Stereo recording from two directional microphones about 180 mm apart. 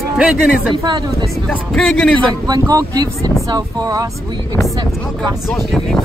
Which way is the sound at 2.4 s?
20° right (ahead or behind).